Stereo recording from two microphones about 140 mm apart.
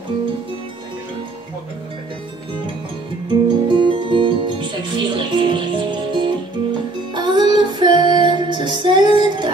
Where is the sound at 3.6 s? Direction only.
35° right (ahead or behind).